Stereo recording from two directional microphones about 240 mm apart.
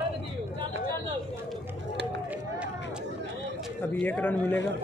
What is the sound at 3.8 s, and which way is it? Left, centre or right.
Speech, centre.